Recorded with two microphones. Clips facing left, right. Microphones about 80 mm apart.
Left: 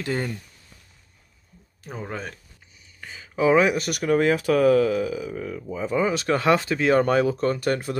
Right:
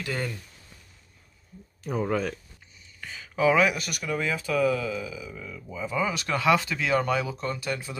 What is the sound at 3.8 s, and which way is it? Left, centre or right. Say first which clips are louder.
Speech: left 9 dB; left.